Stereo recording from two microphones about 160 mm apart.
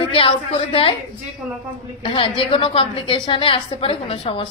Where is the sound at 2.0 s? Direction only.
35° left (ahead or behind).